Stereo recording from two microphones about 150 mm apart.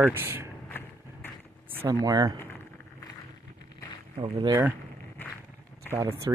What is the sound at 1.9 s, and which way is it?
Speech, 25° right (ahead or behind).